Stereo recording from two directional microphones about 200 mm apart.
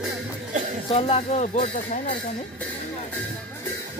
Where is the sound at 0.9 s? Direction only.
30° left (ahead or behind).